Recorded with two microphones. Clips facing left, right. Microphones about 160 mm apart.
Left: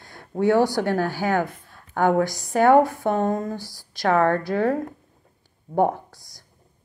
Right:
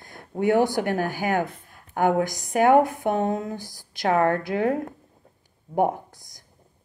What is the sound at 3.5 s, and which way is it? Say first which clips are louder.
Speech: left 2 dB; 50° right (ahead or behind).